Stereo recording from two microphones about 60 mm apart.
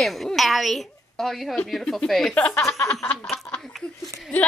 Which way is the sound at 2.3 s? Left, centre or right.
Left.